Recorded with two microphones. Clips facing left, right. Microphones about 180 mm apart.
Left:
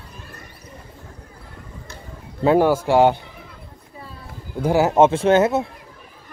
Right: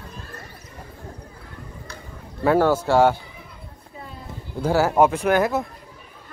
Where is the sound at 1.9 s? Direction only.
20° left (ahead or behind).